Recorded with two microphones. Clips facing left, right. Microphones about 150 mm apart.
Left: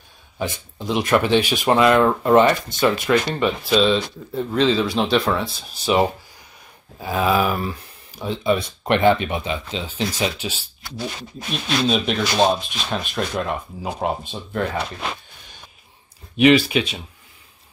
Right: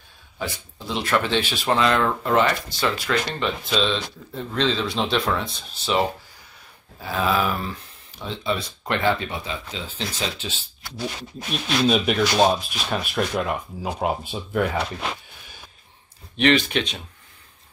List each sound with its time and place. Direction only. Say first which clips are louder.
0.4 s speech: left 4 dB; 20° left (ahead or behind)
3.3 s speech: left 5 dB; 10° left (ahead or behind)
11.5 s speech: even; centre (ahead or behind)
16.3 s speech: left 5 dB; 10° left (ahead or behind)